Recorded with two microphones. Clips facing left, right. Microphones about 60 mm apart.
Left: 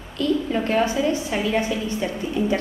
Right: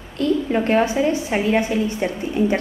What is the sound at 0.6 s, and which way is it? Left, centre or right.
A woman's voice, right.